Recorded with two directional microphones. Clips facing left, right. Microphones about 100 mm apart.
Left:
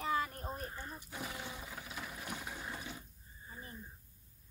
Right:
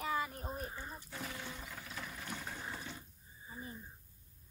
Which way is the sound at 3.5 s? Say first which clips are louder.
Right 3 dB; 5° right (ahead or behind).